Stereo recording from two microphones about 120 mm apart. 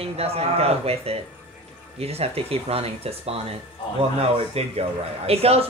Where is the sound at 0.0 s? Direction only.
55° right (ahead or behind).